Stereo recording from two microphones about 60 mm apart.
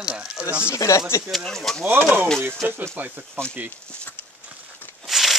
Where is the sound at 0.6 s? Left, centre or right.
Left.